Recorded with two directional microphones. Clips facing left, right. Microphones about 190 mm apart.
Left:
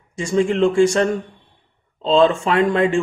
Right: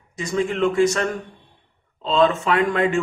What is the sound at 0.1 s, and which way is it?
Speech, 30° left (ahead or behind).